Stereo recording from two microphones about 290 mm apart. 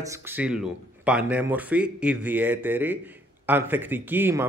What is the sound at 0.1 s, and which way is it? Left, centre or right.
Speech, centre.